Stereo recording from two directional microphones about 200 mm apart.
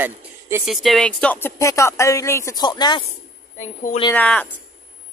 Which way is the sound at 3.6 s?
35° left (ahead or behind).